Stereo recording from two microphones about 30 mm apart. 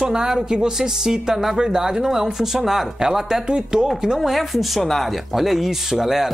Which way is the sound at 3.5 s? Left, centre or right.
Right.